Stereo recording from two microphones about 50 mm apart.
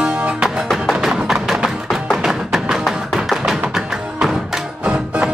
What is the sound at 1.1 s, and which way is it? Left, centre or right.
Music, centre.